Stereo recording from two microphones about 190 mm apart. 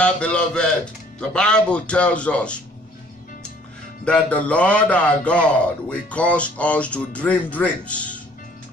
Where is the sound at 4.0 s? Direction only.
5° left (ahead or behind).